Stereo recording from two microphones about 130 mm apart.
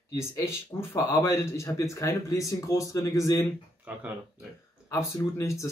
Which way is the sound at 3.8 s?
10° right (ahead or behind).